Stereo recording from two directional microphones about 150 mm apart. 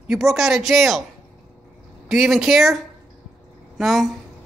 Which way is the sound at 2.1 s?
Centre (ahead or behind).